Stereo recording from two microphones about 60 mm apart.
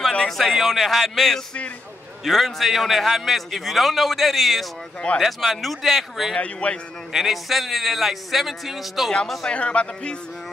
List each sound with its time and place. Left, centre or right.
0.4 s a man's voice: centre
6.3 s speech: centre
7.1 s a man's voice: centre
9.5 s speech: left